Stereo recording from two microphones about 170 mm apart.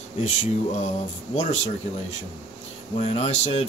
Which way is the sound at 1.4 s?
40° left (ahead or behind).